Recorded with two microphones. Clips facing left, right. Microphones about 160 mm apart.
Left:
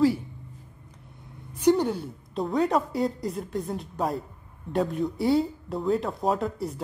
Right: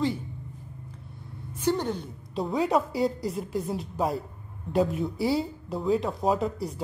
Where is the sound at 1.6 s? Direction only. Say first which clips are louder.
Left 5 dB; 10° left (ahead or behind).